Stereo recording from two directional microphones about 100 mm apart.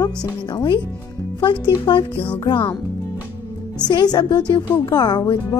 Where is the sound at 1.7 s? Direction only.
55° left (ahead or behind).